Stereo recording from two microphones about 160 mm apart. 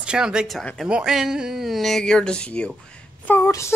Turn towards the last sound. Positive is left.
turn(degrees=20)  # may be behind; listen again after turning